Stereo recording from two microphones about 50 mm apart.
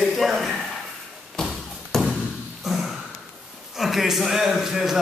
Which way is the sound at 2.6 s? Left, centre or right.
Centre.